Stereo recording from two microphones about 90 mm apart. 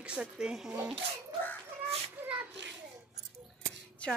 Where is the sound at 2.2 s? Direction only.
20° right (ahead or behind).